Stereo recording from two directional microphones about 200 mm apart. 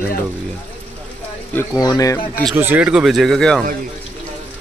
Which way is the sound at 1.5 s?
15° left (ahead or behind).